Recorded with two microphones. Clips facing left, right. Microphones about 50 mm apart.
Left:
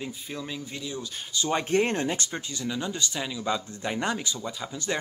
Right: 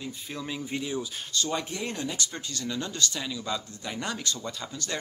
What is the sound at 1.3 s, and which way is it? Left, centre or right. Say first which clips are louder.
Speech: left 1 dB; centre.